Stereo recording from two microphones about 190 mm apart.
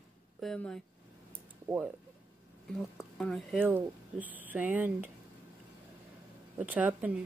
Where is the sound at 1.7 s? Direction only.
25° right (ahead or behind).